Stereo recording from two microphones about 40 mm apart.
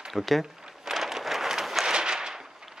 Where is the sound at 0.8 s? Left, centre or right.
Centre.